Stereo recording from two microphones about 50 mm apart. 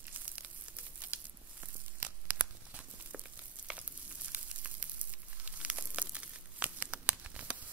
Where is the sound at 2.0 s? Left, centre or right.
Right.